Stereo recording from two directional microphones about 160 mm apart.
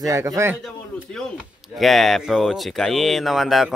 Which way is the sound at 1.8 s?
Centre (ahead or behind).